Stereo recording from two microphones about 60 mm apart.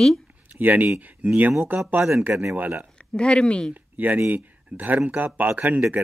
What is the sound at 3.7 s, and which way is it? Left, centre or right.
Speech, right.